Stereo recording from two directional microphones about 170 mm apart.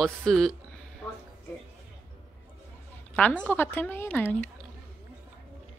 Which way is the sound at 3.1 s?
5° left (ahead or behind).